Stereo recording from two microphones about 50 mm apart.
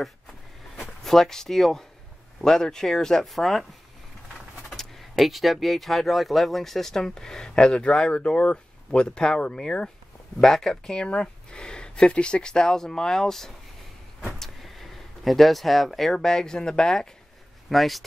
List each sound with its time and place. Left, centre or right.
1.0 s speech: centre
4.6 s speech: centre
17.6 s speech: centre